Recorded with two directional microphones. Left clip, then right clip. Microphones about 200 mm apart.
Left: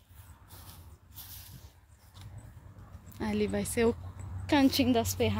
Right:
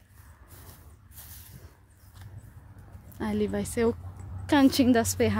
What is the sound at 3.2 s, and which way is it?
Speech, 10° right (ahead or behind).